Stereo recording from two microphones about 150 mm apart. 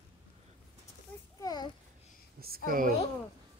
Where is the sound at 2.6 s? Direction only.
65° right (ahead or behind).